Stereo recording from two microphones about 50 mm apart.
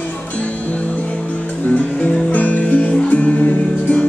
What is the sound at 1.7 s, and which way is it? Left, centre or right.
Music, left.